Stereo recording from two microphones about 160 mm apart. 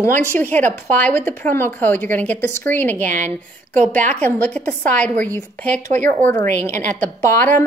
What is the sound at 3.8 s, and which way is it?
Speech, 50° right (ahead or behind).